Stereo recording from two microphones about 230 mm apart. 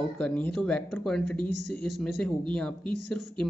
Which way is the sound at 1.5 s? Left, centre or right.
Left.